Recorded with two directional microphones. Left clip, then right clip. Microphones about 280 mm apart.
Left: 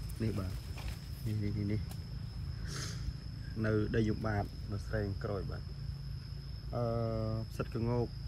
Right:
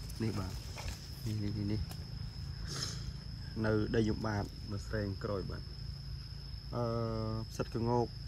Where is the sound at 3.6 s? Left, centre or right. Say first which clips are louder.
Right 1 dB; centre.